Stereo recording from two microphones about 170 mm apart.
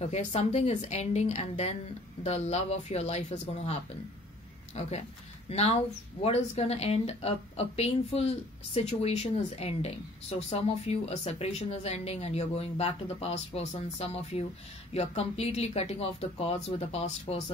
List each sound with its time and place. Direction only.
0.0 s speech: 40° left (ahead or behind)